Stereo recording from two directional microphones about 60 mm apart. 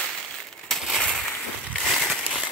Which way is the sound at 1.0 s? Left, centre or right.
Centre.